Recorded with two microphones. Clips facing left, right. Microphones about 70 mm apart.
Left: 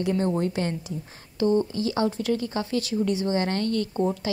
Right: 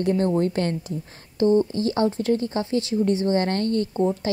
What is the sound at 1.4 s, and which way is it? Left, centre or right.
A woman's voice, right.